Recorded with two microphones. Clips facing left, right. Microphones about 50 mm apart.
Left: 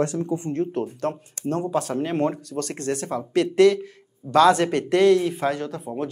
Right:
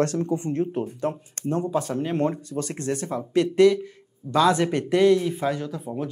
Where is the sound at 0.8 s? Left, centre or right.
Centre.